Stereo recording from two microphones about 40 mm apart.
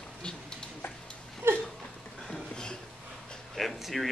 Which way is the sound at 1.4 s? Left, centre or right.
Right.